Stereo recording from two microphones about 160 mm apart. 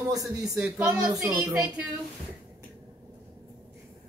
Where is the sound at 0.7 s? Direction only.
10° right (ahead or behind).